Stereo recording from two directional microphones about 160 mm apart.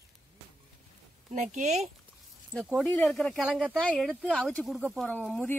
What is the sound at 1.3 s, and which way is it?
Speech, 45° right (ahead or behind).